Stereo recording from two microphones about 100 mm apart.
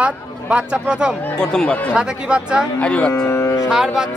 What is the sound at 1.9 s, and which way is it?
Speech, 10° right (ahead or behind).